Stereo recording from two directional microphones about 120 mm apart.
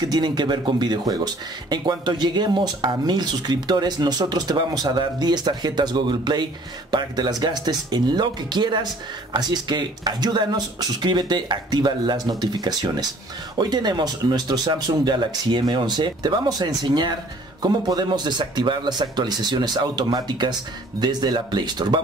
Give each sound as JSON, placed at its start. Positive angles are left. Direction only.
{"t": 0.1, "sound": "speech", "side_deg": -35}